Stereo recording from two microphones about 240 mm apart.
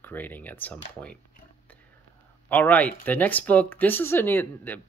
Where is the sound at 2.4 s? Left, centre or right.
Centre.